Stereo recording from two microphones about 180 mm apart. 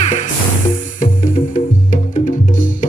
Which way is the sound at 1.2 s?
45° left (ahead or behind).